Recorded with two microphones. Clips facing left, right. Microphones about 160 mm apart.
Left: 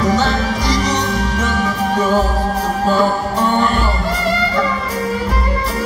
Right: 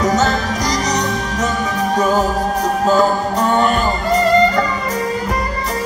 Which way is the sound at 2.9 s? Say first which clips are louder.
Right 1 dB; 40° right (ahead or behind).